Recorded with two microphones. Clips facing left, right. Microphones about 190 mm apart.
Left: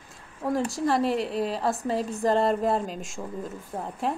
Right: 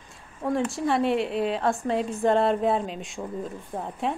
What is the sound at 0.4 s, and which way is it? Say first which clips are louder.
Speech: even; centre (ahead or behind).